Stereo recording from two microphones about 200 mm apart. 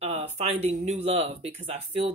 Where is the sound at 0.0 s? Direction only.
30° right (ahead or behind).